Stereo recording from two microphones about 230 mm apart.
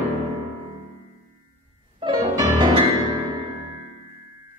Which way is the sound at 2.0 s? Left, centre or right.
Centre.